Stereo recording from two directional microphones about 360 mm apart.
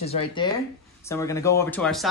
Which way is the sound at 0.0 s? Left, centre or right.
Centre.